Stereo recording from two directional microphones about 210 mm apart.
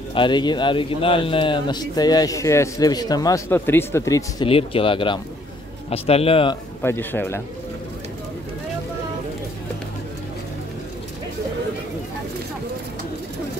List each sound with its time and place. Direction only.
0.1 s a man's voice: 20° left (ahead or behind)
4.5 s a man's voice: 25° left (ahead or behind)
6.8 s speech: 10° left (ahead or behind)